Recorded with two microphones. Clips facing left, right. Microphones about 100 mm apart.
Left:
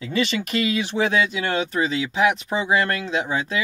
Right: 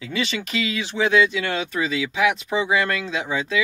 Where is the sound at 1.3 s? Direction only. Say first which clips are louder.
Left 1 dB; 35° left (ahead or behind).